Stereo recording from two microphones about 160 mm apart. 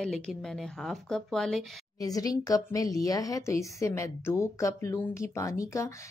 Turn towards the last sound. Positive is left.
turn(degrees=20)  # may be behind; listen again after turning